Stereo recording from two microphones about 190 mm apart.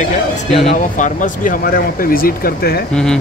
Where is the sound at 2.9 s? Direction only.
5° left (ahead or behind).